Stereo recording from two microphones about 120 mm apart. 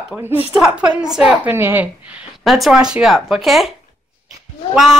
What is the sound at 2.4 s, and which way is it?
Speech, centre (ahead or behind).